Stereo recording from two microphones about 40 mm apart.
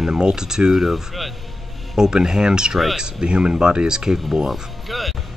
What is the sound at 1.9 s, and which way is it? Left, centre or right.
Speech, centre.